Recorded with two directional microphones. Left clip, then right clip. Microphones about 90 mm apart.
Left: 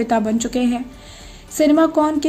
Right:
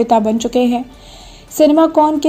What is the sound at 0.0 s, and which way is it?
Speech, 25° right (ahead or behind).